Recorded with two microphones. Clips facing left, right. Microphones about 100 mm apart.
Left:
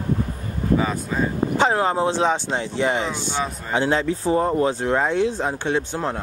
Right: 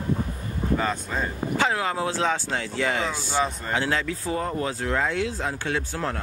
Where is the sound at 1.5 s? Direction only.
30° left (ahead or behind).